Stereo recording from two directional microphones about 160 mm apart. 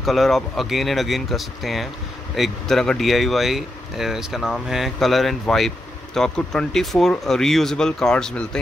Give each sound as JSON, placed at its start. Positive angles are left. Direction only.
{"t": 0.0, "sound": "speech", "side_deg": 0}